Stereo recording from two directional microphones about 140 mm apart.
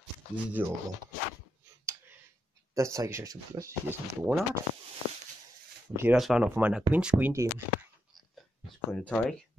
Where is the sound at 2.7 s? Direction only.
25° right (ahead or behind).